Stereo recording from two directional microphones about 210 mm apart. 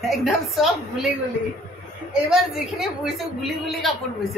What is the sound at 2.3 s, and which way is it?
A woman's voice, centre (ahead or behind).